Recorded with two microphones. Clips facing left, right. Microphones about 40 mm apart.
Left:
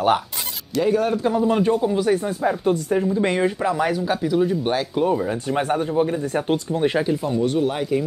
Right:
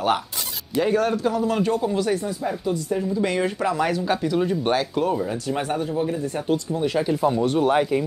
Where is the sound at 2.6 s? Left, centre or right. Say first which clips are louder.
Left 5 dB; left.